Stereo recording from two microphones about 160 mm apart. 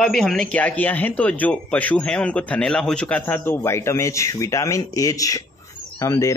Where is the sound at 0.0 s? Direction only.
5° left (ahead or behind).